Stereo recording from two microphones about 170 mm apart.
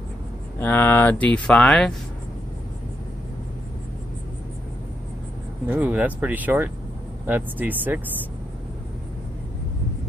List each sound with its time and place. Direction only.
0.6 s speech: 10° left (ahead or behind)
5.7 s speech: 10° right (ahead or behind)